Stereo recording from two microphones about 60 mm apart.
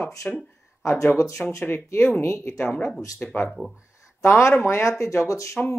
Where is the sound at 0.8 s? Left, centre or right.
Left.